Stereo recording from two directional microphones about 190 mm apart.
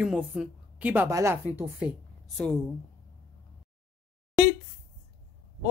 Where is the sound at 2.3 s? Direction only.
Centre (ahead or behind).